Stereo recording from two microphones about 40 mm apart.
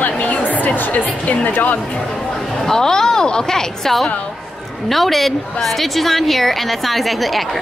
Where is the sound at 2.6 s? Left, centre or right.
Centre.